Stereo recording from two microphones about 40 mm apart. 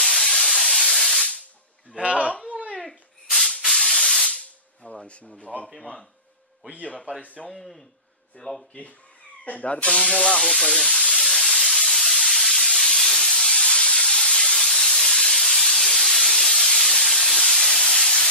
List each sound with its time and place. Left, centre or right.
0.0 s steam: centre
0.9 s spray: centre
1.9 s speech: right
2.8 s a sound: centre
3.6 s spray: centre
4.8 s a sound: left
7.1 s speech: right
7.4 s a man's voice: centre
9.4 s speech: left
10.4 s sizzle: centre
11.3 s steam: centre